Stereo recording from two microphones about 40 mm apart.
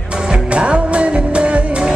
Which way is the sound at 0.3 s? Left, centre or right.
Right.